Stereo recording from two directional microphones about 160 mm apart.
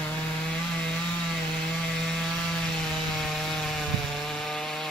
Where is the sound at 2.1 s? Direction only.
5° left (ahead or behind).